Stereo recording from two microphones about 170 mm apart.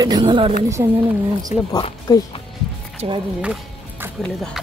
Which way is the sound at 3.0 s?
35° right (ahead or behind).